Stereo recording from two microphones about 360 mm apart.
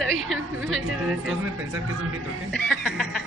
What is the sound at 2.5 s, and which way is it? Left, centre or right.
Speech, centre.